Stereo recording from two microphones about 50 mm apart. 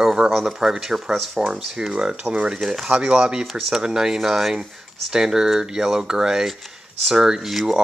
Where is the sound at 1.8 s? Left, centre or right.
Centre.